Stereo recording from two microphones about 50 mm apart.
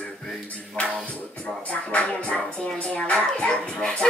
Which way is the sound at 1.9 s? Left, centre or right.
Left.